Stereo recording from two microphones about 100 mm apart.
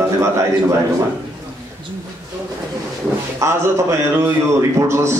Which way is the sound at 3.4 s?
30° right (ahead or behind).